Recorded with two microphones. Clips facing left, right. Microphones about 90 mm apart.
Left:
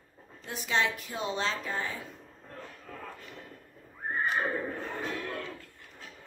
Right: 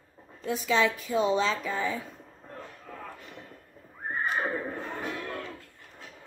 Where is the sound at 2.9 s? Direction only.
15° right (ahead or behind).